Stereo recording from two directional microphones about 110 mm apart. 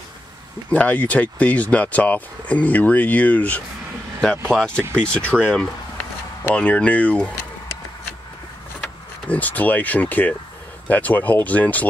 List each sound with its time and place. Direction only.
0.7 s speech: 10° left (ahead or behind)
9.3 s speech: 15° left (ahead or behind)